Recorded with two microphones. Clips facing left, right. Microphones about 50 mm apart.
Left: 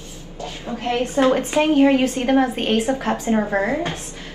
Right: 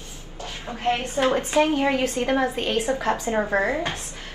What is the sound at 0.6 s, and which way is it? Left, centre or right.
Speech, right.